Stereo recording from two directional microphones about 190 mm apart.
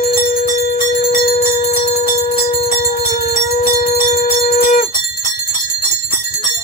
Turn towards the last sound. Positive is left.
turn(degrees=50)  # may be behind; listen again after turning